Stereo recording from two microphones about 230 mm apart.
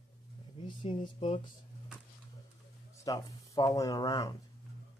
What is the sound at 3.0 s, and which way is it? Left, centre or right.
Speech, centre.